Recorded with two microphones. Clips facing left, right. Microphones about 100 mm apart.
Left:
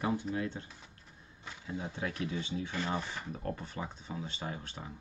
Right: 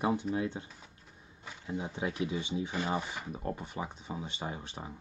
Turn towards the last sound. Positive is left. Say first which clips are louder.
# right 2 dB
turn(degrees=-20)  # may be behind; listen again after turning